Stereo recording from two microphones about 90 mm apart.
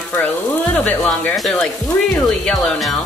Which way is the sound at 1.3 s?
Centre (ahead or behind).